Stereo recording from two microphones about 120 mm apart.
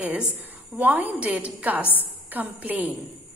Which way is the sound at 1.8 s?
15° left (ahead or behind).